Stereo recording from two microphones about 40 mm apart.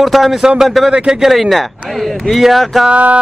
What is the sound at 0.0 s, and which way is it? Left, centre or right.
A man's voice, centre.